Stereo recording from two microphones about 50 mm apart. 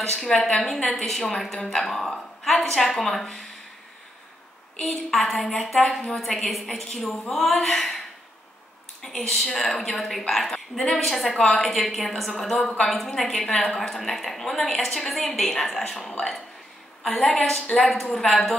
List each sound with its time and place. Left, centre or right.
0.1 s a woman's voice: centre
0.4 s a woman's voice: left
0.8 s a woman's voice: centre
4.7 s a woman's voice: centre
9.0 s a woman's voice: centre